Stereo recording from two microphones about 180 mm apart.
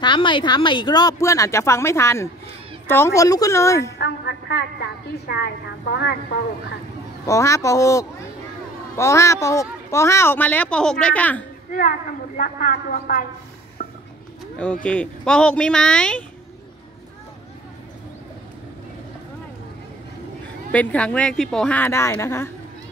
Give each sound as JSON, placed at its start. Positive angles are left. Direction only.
{"t": 0.0, "sound": "a woman's voice", "side_deg": 25}
{"t": 4.0, "sound": "a woman's voice", "side_deg": 65}
{"t": 7.2, "sound": "a woman's voice", "side_deg": 15}
{"t": 12.4, "sound": "speech", "side_deg": 50}
{"t": 13.8, "sound": "a sound", "side_deg": 50}
{"t": 14.6, "sound": "speech", "side_deg": 5}
{"t": 20.7, "sound": "a woman's voice", "side_deg": 10}